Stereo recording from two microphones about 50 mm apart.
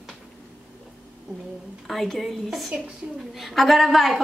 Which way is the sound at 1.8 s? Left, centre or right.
Centre.